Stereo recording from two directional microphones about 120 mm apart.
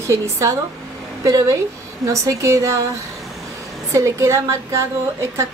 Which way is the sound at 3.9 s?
25° right (ahead or behind).